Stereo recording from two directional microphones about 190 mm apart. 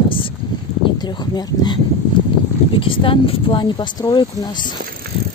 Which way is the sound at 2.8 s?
25° left (ahead or behind).